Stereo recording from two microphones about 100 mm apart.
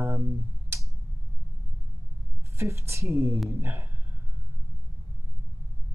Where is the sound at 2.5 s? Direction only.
25° right (ahead or behind).